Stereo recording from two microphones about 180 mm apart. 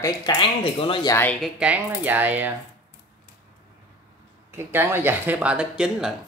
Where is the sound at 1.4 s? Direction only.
5° right (ahead or behind).